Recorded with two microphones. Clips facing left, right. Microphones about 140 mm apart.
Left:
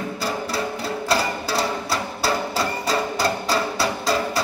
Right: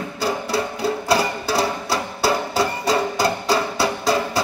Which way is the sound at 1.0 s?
20° right (ahead or behind).